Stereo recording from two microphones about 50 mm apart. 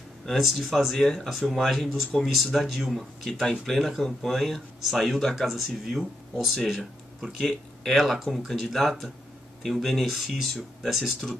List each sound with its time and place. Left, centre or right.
0.3 s speech: centre
6.5 s speech: centre